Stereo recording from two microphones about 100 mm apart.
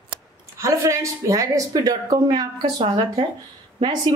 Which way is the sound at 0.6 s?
30° right (ahead or behind).